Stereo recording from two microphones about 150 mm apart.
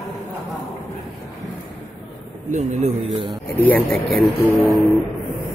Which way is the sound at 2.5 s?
50° right (ahead or behind).